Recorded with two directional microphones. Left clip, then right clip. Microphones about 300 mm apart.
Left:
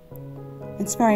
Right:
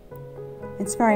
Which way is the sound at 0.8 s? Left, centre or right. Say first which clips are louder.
Even; left.